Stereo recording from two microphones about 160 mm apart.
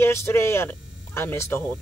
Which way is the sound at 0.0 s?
15° left (ahead or behind).